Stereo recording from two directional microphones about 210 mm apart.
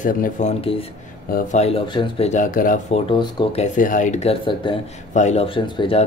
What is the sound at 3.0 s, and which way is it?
Speech, 25° left (ahead or behind).